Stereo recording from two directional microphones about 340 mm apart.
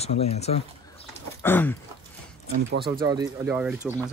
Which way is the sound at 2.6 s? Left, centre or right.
Right.